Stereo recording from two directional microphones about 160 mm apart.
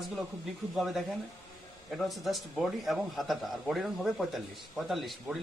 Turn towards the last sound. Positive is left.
turn(degrees=0)  # may be behind; listen again after turning